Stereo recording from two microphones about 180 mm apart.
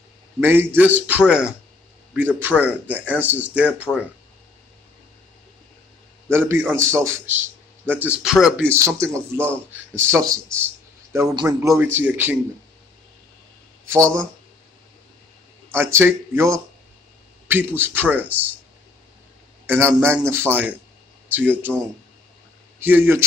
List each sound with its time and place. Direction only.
0.4 s speech: 10° right (ahead or behind)
6.3 s speech: 10° right (ahead or behind)
15.7 s speech: 10° right (ahead or behind)
19.6 s speech: 10° right (ahead or behind)
22.8 s speech: 10° right (ahead or behind)